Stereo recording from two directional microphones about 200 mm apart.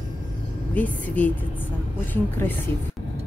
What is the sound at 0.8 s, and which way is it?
Speech, 10° left (ahead or behind).